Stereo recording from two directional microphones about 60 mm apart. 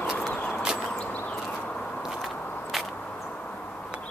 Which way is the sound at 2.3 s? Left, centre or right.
Left.